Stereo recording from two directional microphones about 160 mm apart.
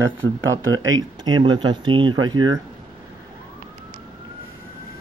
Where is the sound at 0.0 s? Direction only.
20° right (ahead or behind).